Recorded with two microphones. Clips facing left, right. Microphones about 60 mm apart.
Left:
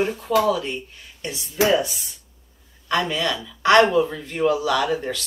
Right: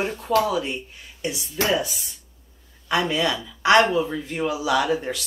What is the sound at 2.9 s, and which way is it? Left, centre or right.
Speech, centre.